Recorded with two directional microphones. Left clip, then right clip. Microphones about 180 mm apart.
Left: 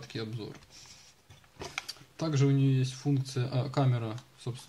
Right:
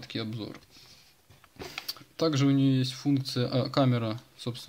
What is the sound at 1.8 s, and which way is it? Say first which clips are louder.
Speech: right 9 dB; 45° right (ahead or behind).